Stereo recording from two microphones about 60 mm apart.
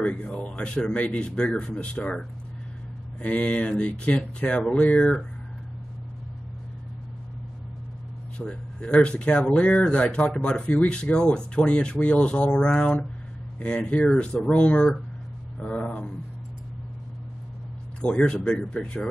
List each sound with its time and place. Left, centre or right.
0.0 s speech: centre
8.4 s speech: centre
18.0 s speech: centre